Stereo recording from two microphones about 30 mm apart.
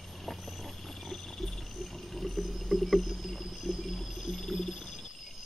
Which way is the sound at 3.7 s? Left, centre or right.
Centre.